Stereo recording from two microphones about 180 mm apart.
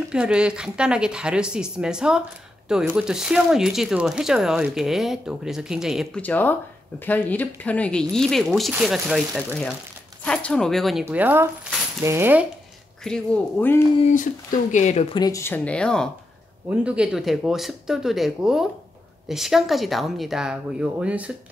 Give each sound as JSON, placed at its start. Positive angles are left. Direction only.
{"t": 0.1, "sound": "speech", "side_deg": -5}
{"t": 6.2, "sound": "speech", "side_deg": 10}
{"t": 11.1, "sound": "speech", "side_deg": -10}
{"t": 13.0, "sound": "speech", "side_deg": 5}
{"t": 14.0, "sound": "speech", "side_deg": 45}
{"t": 15.1, "sound": "speech", "side_deg": 20}
{"t": 16.6, "sound": "speech", "side_deg": -5}